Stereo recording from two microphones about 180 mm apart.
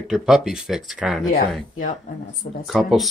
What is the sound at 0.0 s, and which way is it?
Speech, 5° right (ahead or behind).